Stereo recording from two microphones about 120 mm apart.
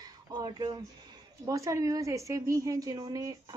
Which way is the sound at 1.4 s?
30° right (ahead or behind).